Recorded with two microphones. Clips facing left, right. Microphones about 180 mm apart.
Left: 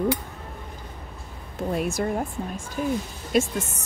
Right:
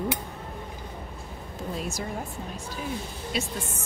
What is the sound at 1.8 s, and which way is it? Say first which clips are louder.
A woman's voice: left 8 dB; 55° left (ahead or behind).